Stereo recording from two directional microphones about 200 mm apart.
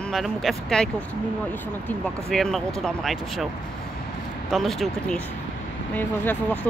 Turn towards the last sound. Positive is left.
turn(degrees=10)  # may be behind; listen again after turning